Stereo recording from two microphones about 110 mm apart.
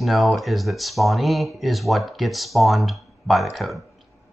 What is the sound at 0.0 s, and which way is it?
Speech, centre (ahead or behind).